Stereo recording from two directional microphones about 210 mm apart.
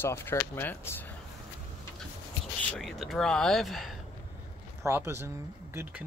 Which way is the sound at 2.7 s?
Centre (ahead or behind).